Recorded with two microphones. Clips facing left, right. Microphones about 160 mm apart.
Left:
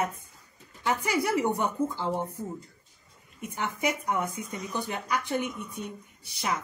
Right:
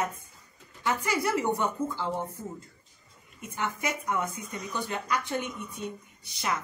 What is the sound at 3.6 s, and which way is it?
A woman's voice, 15° left (ahead or behind).